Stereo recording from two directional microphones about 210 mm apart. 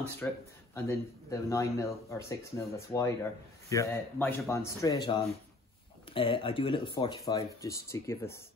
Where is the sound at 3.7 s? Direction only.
10° left (ahead or behind).